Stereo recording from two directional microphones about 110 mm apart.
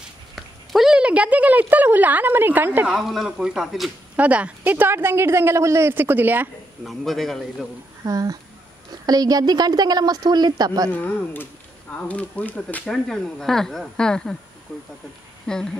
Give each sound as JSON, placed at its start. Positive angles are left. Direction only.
{"t": 0.4, "sound": "a sound", "side_deg": -5}
{"t": 2.9, "sound": "speech", "side_deg": 0}
{"t": 4.2, "sound": "a woman's voice", "side_deg": -10}
{"t": 6.8, "sound": "speech", "side_deg": 0}
{"t": 8.0, "sound": "a woman's voice", "side_deg": -35}
{"t": 10.9, "sound": "speech", "side_deg": 15}
{"t": 15.4, "sound": "speech", "side_deg": 5}